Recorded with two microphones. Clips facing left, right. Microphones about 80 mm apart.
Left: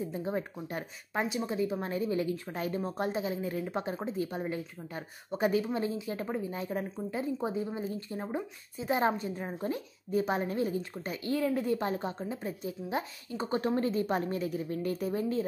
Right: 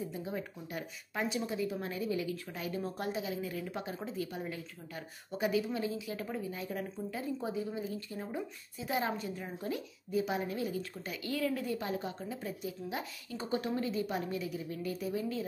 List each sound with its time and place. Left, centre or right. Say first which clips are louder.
0.1 s a woman's voice: left 5 dB; left